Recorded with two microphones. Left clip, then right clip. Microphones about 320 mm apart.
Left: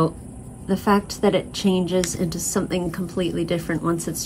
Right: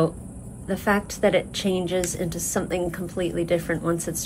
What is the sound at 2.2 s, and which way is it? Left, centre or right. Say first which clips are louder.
Speech: left 2 dB; right.